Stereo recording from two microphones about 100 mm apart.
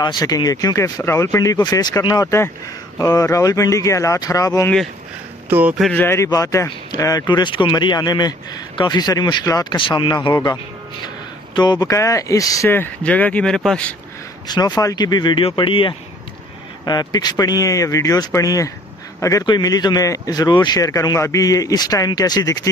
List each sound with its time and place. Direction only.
0.0 s speech: 45° left (ahead or behind)
5.5 s speech: 15° right (ahead or behind)
5.9 s speech: 25° left (ahead or behind)
7.2 s speech: 50° left (ahead or behind)
9.8 s speech: 55° left (ahead or behind)
10.3 s speech: 35° left (ahead or behind)
11.5 s speech: 45° left (ahead or behind)
11.9 s speech: 30° left (ahead or behind)
12.6 s speech: 20° left (ahead or behind)
14.5 s speech: 45° left (ahead or behind)
15.5 s speech: 60° left (ahead or behind)
16.8 s speech: 40° left (ahead or behind)